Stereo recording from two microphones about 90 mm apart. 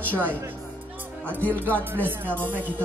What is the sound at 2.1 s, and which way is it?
Speech, 25° right (ahead or behind).